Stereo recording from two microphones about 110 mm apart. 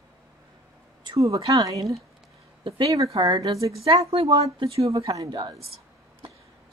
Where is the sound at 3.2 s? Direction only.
45° right (ahead or behind).